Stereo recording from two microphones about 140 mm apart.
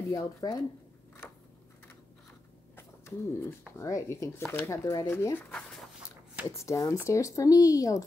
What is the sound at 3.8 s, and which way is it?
A woman's voice, 20° left (ahead or behind).